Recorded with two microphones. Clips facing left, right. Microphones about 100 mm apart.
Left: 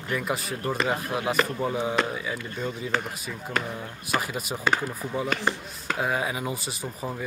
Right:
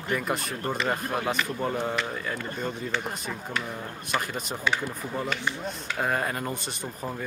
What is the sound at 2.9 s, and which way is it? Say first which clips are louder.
Speech: left 4 dB; 40° left (ahead or behind).